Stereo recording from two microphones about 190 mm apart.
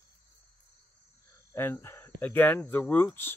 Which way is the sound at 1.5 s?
10° left (ahead or behind).